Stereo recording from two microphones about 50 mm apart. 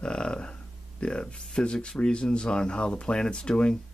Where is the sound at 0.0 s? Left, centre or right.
Centre.